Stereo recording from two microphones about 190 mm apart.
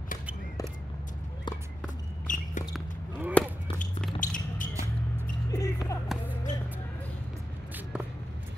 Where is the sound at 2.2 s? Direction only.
40° left (ahead or behind).